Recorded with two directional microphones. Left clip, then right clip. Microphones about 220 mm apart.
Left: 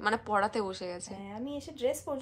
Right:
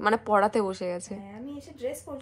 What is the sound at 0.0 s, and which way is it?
Speech, 5° left (ahead or behind).